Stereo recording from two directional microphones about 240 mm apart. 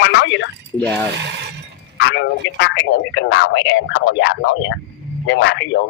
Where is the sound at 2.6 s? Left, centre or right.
Left.